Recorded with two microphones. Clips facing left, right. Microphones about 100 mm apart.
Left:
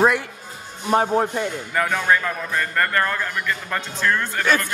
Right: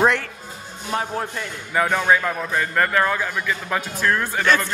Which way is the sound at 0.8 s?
30° left (ahead or behind).